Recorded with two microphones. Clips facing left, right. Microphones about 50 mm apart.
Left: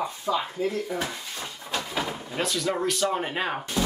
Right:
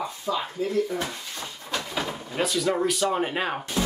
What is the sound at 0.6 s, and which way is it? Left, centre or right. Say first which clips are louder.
Speech: right 1 dB; left.